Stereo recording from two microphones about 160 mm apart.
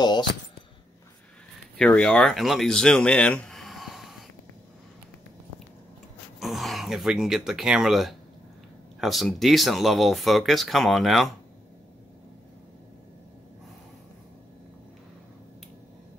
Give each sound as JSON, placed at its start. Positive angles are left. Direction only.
{"t": 0.0, "sound": "speech", "side_deg": 30}
{"t": 1.8, "sound": "speech", "side_deg": 5}
{"t": 6.4, "sound": "speech", "side_deg": 0}